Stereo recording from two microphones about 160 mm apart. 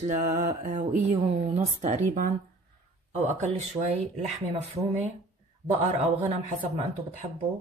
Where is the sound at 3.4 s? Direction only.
45° right (ahead or behind).